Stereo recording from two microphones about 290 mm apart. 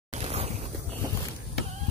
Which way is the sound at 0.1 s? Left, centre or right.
Right.